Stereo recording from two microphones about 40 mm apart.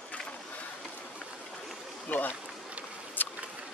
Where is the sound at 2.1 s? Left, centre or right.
Left.